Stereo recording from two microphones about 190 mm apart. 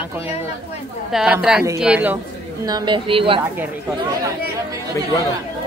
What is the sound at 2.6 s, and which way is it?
Speech, 20° right (ahead or behind).